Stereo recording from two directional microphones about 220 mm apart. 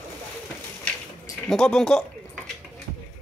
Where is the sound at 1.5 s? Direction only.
5° left (ahead or behind).